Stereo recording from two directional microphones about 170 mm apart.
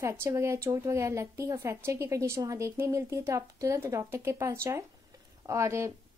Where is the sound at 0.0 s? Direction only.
15° right (ahead or behind).